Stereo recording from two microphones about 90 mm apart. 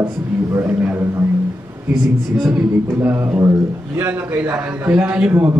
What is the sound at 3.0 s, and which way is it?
Speech, 20° right (ahead or behind).